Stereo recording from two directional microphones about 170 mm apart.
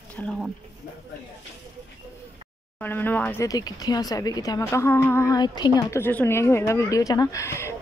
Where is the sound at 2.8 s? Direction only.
10° left (ahead or behind).